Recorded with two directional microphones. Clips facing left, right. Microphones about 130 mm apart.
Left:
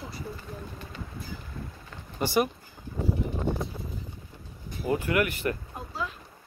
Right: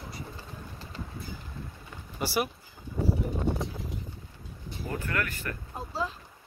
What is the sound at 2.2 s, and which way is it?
Speech, 5° right (ahead or behind).